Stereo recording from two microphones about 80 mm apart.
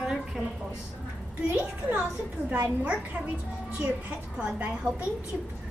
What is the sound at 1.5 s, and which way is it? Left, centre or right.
A woman's voice, centre.